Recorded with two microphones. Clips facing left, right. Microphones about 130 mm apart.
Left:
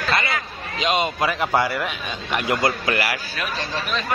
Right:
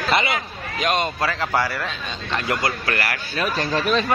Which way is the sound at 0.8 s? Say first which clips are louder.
Left 1 dB; 5° left (ahead or behind).